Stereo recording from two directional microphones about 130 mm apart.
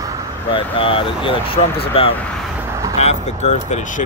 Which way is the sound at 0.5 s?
45° left (ahead or behind).